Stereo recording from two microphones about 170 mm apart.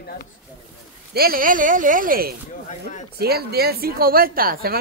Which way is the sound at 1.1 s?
60° right (ahead or behind).